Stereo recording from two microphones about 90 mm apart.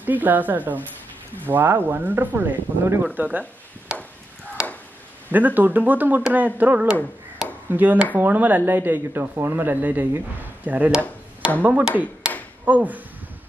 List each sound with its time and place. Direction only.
0.0 s speech: 20° right (ahead or behind)
3.9 s chop: 10° right (ahead or behind)
4.6 s a sound: 10° right (ahead or behind)
5.3 s speech: 20° right (ahead or behind)